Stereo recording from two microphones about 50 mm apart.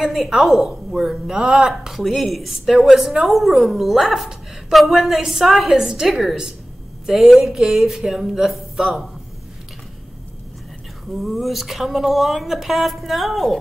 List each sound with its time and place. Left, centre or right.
0.0 s a woman's voice: centre
11.1 s a woman's voice: centre